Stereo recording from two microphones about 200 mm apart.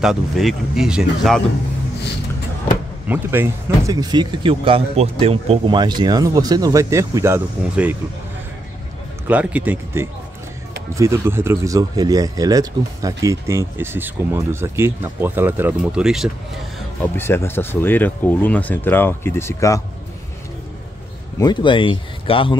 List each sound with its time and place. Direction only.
0.0 s speech: centre (ahead or behind)
3.1 s speech: 10° right (ahead or behind)
9.3 s speech: 5° right (ahead or behind)
17.0 s speech: 10° left (ahead or behind)
21.4 s speech: 20° left (ahead or behind)